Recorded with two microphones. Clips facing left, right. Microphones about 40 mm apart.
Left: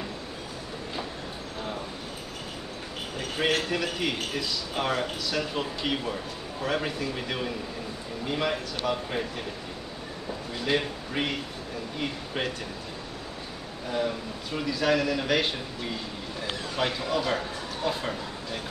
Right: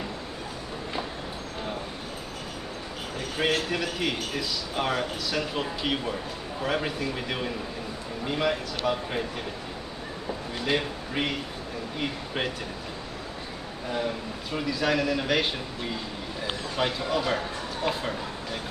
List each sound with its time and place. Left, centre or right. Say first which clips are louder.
3.4 s a man's voice: even; centre
10.6 s speech: left 1 dB; centre
13.9 s a man's voice: left 2 dB; centre
17.9 s speech: even; right